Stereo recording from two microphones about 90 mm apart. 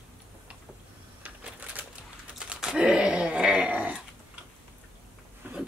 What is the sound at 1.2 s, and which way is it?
Typewriter, 20° right (ahead or behind).